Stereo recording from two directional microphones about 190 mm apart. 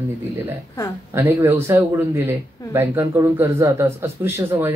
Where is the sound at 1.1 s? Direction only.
10° right (ahead or behind).